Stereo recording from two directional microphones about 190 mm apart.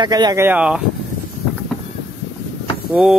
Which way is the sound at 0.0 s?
20° right (ahead or behind).